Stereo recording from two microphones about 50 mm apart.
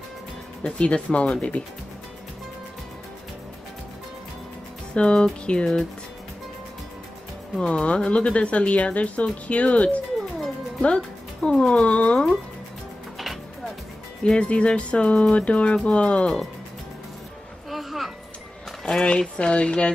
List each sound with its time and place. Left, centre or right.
0.7 s speech: centre
4.9 s speech: centre
7.6 s speech: left
10.8 s music: centre
11.5 s speech: centre
14.2 s speech: left
17.6 s music: centre
18.9 s speech: centre